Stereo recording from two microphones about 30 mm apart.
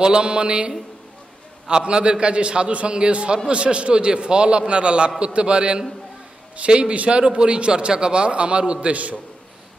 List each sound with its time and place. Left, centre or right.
0.0 s a man's voice: right
6.7 s a man's voice: right
8.8 s a man's voice: right